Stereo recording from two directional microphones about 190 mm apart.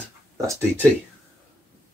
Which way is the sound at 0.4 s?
15° right (ahead or behind).